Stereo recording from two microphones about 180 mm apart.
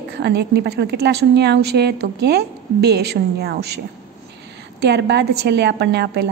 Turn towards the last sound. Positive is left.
turn(degrees=-65)  # may be behind; listen again after turning